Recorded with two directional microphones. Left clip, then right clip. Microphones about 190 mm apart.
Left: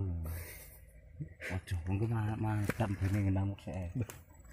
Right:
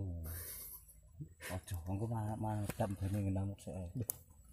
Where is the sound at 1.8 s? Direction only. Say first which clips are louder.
Left 4 dB; 35° right (ahead or behind).